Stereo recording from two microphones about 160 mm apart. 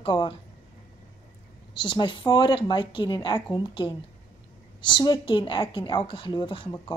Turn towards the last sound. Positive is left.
turn(degrees=30)  # may be behind; listen again after turning